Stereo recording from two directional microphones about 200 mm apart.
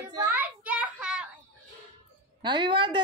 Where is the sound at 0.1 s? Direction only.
10° right (ahead or behind).